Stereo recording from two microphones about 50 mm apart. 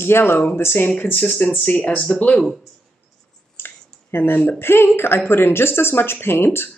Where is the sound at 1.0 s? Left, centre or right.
Left.